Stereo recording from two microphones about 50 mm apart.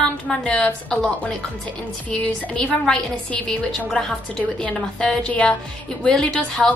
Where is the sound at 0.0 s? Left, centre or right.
Centre.